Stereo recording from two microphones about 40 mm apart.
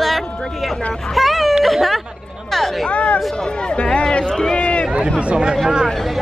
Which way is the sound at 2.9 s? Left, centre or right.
Left.